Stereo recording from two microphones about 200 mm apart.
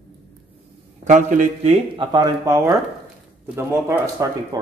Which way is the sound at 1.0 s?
35° right (ahead or behind).